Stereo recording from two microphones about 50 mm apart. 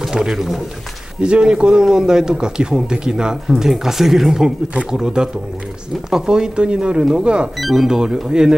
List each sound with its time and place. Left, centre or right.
0.0 s speech: centre
1.2 s a man's voice: centre
7.5 s a man's voice: centre